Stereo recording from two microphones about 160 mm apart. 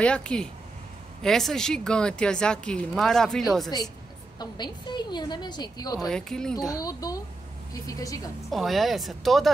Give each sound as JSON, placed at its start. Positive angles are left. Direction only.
{"t": 0.0, "sound": "speech", "side_deg": 5}
{"t": 4.4, "sound": "a woman's voice", "side_deg": 25}
{"t": 5.9, "sound": "speech", "side_deg": 0}
{"t": 6.7, "sound": "a woman's voice", "side_deg": 20}
{"t": 8.5, "sound": "speech", "side_deg": 0}